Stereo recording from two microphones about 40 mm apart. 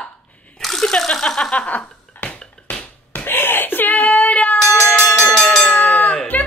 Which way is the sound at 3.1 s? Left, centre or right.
Left.